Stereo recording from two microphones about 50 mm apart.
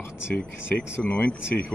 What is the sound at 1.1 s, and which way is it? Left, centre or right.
Speech, left.